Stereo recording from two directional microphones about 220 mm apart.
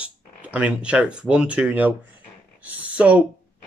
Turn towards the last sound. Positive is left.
turn(degrees=-5)  # may be behind; listen again after turning